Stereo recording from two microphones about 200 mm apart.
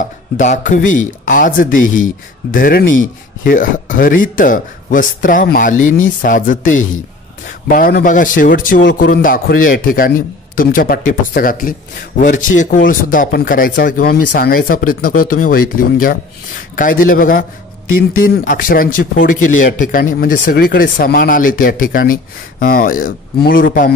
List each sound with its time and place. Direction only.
0.0 s speech: 40° left (ahead or behind)